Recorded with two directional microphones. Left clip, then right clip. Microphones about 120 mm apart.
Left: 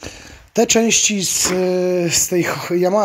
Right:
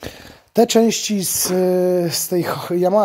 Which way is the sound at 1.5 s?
35° right (ahead or behind).